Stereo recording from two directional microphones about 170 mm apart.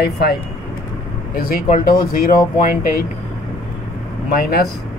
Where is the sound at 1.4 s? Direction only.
60° left (ahead or behind).